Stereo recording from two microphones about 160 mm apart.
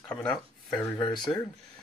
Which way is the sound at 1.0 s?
25° left (ahead or behind).